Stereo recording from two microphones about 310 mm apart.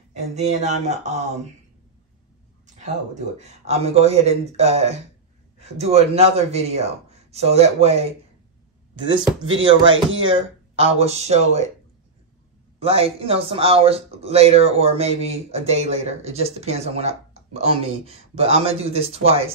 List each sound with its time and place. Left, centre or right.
0.1 s speech: right
3.3 s speech: right
9.4 s speech: right
10.3 s speech: centre
12.7 s speech: centre